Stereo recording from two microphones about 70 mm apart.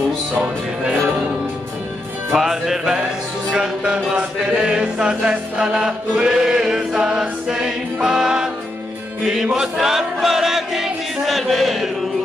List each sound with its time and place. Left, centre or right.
0.3 s music: centre
2.3 s music: centre
3.5 s chant: centre
9.2 s music: centre